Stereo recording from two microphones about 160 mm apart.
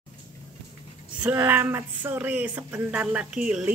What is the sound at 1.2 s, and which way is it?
Speech, 10° right (ahead or behind).